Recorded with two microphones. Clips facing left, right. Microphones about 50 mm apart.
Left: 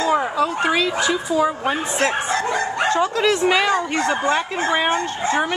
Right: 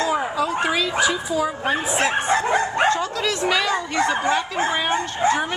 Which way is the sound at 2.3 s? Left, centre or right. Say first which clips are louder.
Right 1 dB; centre.